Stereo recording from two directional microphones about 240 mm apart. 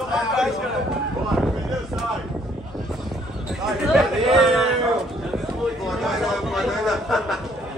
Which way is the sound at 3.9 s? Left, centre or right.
Centre.